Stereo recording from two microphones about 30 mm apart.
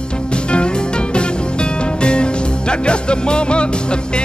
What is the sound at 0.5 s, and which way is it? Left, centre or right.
Music, left.